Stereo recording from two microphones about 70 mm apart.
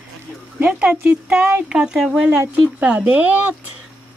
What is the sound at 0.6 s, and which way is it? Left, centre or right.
Speech, right.